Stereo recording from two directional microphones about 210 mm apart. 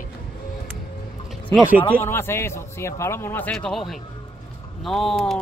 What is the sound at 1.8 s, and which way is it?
A man's voice, 10° left (ahead or behind).